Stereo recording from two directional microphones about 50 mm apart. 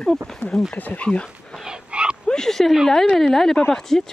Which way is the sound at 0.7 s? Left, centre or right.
Left.